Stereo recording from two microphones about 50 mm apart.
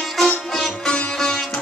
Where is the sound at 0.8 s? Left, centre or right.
Left.